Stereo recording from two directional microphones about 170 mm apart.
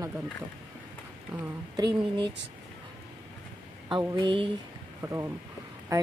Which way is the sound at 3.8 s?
25° right (ahead or behind).